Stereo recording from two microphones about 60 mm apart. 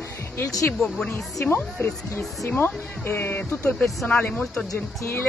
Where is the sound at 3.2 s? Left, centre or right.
Left.